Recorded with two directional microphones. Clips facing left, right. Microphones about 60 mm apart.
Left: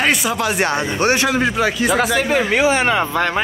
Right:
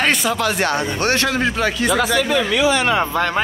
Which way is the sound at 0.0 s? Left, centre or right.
Centre.